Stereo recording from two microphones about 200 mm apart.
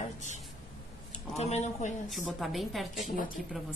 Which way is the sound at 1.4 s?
35° left (ahead or behind).